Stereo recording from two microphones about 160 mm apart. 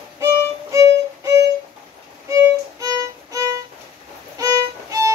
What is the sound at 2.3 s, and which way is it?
Violin, 20° right (ahead or behind).